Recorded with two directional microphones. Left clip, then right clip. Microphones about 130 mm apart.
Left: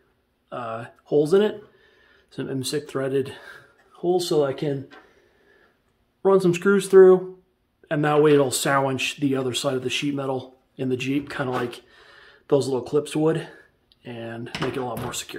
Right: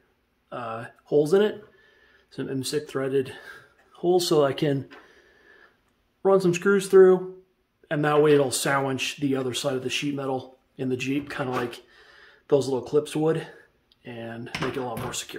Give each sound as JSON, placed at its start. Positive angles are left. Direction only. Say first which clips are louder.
{"t": 0.5, "sound": "speech", "louder": "left 2 dB", "side_deg": 15}
{"t": 2.3, "sound": "speech", "louder": "left 1 dB", "side_deg": 25}
{"t": 4.0, "sound": "speech", "louder": "even", "side_deg": -15}
{"t": 4.3, "sound": "speech", "louder": "right 1 dB", "side_deg": -40}
{"t": 6.2, "sound": "speech", "louder": "left 2 dB", "side_deg": 25}